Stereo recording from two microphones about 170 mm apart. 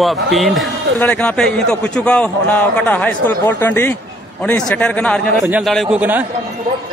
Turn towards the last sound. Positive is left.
turn(degrees=-10)  # may be behind; listen again after turning